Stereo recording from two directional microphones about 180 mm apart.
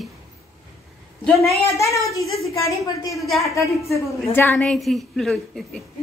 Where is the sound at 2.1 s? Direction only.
Centre (ahead or behind).